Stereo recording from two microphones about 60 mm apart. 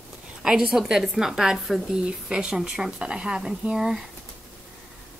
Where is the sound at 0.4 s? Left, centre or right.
Centre.